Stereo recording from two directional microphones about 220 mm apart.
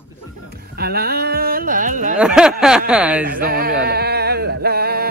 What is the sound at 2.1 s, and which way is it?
Speech, 5° right (ahead or behind).